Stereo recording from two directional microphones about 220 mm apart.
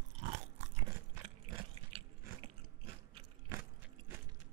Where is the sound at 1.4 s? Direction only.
25° right (ahead or behind).